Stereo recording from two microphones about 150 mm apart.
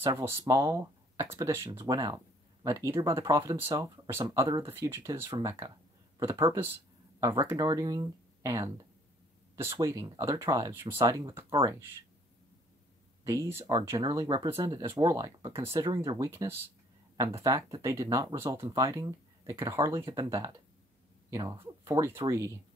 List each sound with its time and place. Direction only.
0.0 s speech: 15° right (ahead or behind)
13.2 s speech: 20° right (ahead or behind)